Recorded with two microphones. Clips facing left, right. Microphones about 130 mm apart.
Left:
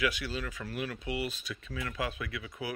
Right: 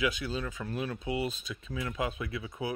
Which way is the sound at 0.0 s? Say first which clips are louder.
Right 1 dB; 25° right (ahead or behind).